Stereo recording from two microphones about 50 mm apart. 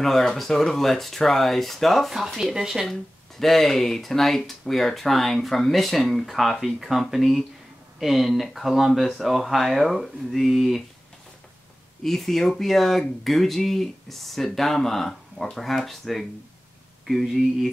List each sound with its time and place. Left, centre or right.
0.0 s speech: centre
2.9 s speech: centre
12.0 s speech: centre